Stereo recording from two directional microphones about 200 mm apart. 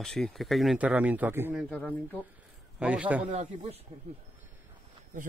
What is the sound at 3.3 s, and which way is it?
Speech, 30° right (ahead or behind).